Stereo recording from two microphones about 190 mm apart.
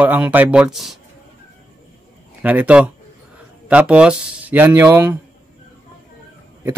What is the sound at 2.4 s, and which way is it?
Speech, 10° right (ahead or behind).